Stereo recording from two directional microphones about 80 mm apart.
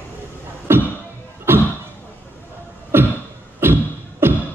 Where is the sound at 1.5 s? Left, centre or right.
Right.